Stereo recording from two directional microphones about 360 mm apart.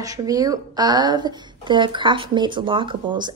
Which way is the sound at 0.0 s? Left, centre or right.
Centre.